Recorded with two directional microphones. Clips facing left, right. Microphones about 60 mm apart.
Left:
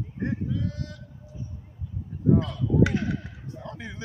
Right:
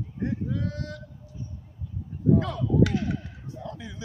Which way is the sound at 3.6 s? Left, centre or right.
Left.